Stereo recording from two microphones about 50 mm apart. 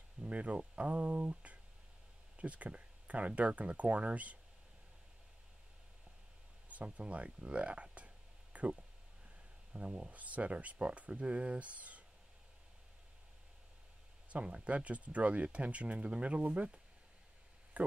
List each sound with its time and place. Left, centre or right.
0.2 s speech: right
6.7 s speech: right
14.3 s speech: right